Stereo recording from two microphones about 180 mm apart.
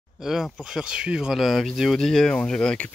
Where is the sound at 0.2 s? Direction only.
Centre (ahead or behind).